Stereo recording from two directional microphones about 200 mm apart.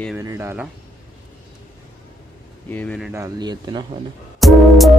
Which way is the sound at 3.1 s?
20° right (ahead or behind).